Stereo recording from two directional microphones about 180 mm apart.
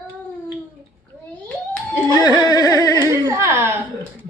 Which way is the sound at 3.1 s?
15° right (ahead or behind).